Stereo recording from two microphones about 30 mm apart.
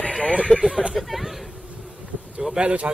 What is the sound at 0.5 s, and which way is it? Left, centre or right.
Speech, left.